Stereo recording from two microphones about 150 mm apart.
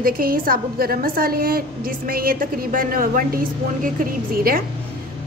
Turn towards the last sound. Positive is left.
turn(degrees=-75)  # may be behind; listen again after turning